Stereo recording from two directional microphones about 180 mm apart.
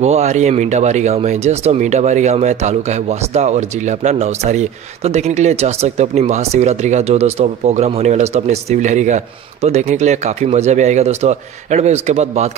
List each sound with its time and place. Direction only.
0.0 s speech: 35° right (ahead or behind)